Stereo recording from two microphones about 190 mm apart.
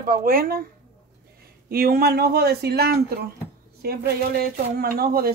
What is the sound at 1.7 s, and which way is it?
Speech, 50° right (ahead or behind).